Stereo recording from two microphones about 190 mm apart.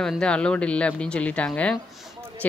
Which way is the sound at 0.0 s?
5° left (ahead or behind).